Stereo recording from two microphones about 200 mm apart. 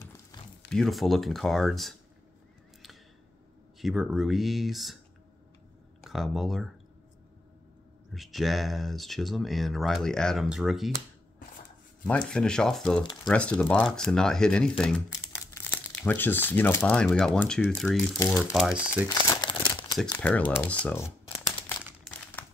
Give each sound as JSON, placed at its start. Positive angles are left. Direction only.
{"t": 0.7, "sound": "speech", "side_deg": 0}
{"t": 3.8, "sound": "speech", "side_deg": 0}
{"t": 6.0, "sound": "speech", "side_deg": 0}
{"t": 8.1, "sound": "speech", "side_deg": 0}
{"t": 12.3, "sound": "speech", "side_deg": 5}
{"t": 13.0, "sound": "a sound", "side_deg": 20}
{"t": 13.3, "sound": "speech", "side_deg": 5}
{"t": 15.1, "sound": "speech", "side_deg": 15}
{"t": 19.0, "sound": "crumpling", "side_deg": 20}
{"t": 20.1, "sound": "speech", "side_deg": 10}
{"t": 21.6, "sound": "crumpling", "side_deg": 10}